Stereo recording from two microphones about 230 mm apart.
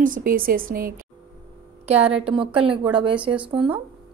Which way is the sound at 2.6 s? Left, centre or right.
Right.